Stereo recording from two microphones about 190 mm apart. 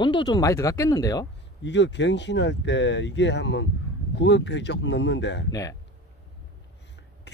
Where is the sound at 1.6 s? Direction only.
70° left (ahead or behind).